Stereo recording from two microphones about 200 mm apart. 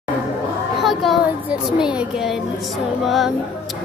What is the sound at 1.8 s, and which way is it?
Speech, 5° right (ahead or behind).